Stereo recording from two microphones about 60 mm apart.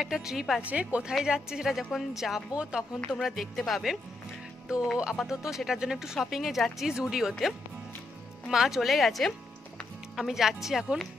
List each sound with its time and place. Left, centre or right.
0.0 s speech: centre
0.6 s a woman's voice: right; by 2.4 s centre
2.5 s speech: centre
3.1 s a woman's voice: centre
4.6 s speech: centre
8.5 s a woman's voice: centre